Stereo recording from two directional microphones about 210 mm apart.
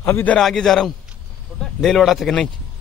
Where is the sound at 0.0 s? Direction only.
10° left (ahead or behind).